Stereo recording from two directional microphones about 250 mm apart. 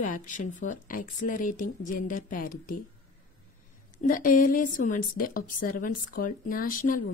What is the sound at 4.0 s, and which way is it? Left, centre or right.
A woman's voice, left.